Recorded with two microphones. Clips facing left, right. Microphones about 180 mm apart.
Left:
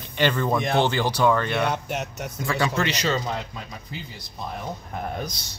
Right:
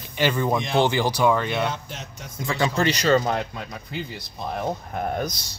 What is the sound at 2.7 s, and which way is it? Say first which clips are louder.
Speech: right 3 dB; 40° right (ahead or behind).